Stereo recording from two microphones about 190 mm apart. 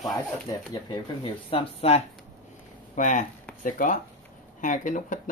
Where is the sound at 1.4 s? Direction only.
30° left (ahead or behind).